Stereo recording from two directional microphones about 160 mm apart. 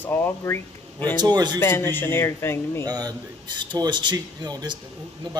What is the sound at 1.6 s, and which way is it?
A man's voice, 15° left (ahead or behind).